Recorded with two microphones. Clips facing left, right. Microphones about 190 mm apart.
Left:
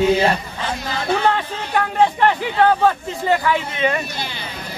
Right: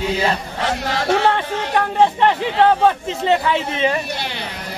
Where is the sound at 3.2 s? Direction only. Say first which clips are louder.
Right 1 dB; 25° right (ahead or behind).